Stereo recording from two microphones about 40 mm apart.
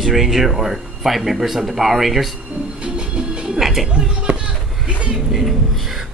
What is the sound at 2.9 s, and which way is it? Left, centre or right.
Music, right.